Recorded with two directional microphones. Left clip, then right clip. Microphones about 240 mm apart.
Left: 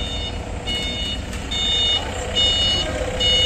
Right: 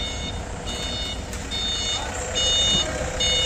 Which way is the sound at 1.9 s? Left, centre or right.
Centre.